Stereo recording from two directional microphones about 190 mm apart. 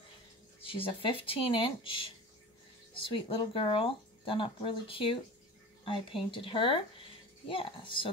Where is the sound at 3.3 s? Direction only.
25° left (ahead or behind).